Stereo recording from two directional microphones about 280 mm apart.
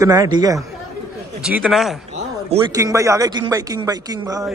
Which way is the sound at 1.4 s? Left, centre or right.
Centre.